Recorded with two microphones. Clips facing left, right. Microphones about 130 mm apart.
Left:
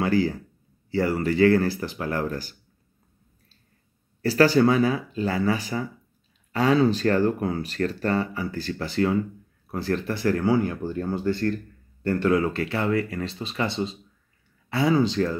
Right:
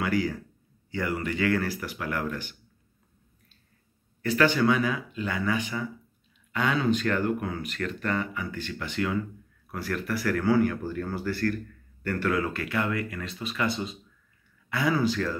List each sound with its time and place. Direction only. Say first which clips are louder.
0.0 s speech: left 4 dB; 30° left (ahead or behind)
4.2 s speech: left 5 dB; 35° left (ahead or behind)